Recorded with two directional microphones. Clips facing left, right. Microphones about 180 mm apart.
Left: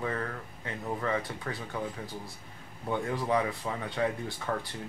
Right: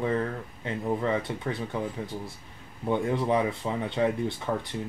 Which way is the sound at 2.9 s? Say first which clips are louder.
Right 4 dB; 25° right (ahead or behind).